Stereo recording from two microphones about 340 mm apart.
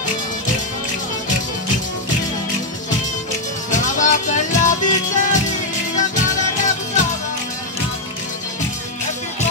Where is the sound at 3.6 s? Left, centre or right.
Left.